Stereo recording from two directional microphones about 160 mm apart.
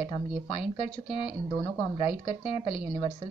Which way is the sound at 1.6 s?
40° left (ahead or behind).